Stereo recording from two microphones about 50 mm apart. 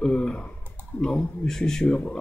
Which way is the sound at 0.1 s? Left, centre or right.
Left.